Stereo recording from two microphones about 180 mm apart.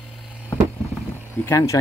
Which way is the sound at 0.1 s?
5° right (ahead or behind).